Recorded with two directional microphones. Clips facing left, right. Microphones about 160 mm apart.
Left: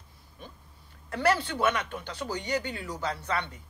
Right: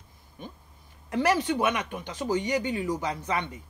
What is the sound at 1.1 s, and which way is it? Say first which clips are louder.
Speech: right 2 dB; 15° right (ahead or behind).